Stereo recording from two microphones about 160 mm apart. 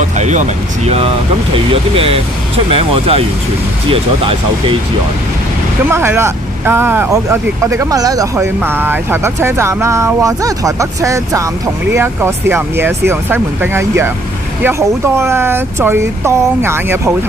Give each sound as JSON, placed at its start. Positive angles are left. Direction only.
{"t": 0.2, "sound": "speech", "side_deg": -50}
{"t": 1.5, "sound": "speech", "side_deg": -35}
{"t": 5.9, "sound": "speech", "side_deg": -15}